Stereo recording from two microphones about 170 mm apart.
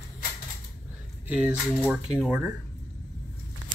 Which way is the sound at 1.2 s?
5° right (ahead or behind).